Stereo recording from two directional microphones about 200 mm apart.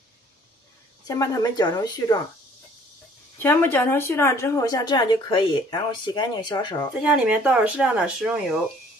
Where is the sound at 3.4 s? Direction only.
10° left (ahead or behind).